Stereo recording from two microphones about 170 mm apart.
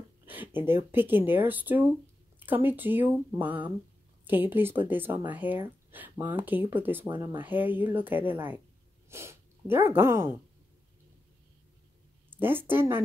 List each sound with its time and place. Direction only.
0.2 s speech: 10° right (ahead or behind)
12.3 s a woman's voice: 10° right (ahead or behind)